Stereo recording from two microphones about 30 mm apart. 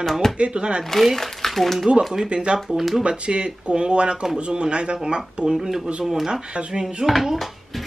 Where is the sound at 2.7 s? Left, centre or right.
Centre.